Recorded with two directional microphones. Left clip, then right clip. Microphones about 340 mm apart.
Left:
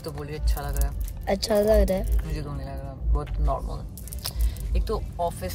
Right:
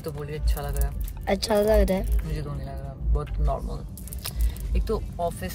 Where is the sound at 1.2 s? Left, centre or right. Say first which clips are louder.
Even; centre.